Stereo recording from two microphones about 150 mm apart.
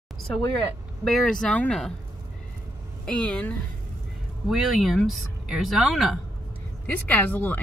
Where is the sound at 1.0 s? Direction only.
5° left (ahead or behind).